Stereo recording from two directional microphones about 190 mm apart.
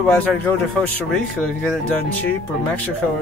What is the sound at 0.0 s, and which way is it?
Speech, 5° left (ahead or behind).